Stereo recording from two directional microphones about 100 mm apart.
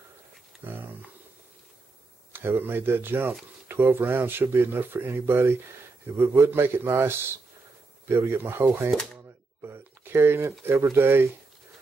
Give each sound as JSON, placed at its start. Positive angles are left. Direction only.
{"t": 2.3, "sound": "speech", "side_deg": -20}
{"t": 9.6, "sound": "a sound", "side_deg": -25}
{"t": 10.6, "sound": "speech", "side_deg": -25}